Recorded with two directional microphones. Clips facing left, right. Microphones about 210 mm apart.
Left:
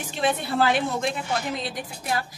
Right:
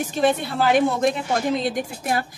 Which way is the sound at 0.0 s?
45° right (ahead or behind).